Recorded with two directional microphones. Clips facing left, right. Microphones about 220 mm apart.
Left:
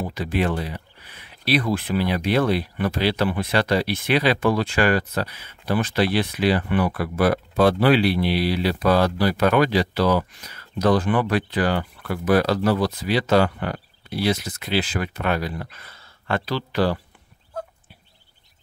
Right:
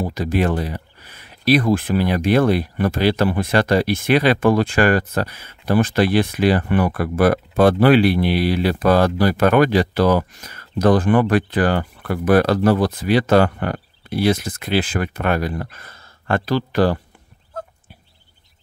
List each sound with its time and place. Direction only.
0.0 s speech: 40° right (ahead or behind)